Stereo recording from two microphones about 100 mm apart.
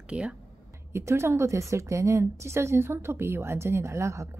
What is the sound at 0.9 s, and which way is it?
A woman's voice, 30° right (ahead or behind).